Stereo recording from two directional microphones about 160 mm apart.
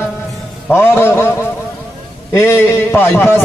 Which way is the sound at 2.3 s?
15° left (ahead or behind).